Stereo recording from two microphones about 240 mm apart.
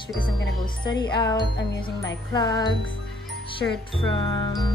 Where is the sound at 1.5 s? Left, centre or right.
Left.